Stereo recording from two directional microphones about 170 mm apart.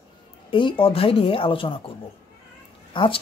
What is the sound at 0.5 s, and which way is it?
Speech, 30° left (ahead or behind).